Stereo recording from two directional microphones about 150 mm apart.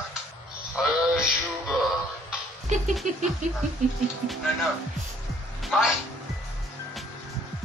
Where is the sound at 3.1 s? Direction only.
60° right (ahead or behind).